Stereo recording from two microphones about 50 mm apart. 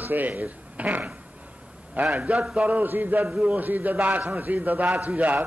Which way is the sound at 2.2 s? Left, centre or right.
Right.